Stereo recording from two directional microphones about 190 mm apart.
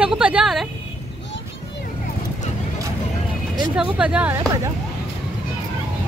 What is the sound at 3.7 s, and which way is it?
Speech, 5° right (ahead or behind).